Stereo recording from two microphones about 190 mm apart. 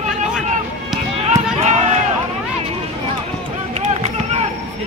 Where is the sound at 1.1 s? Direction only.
35° right (ahead or behind).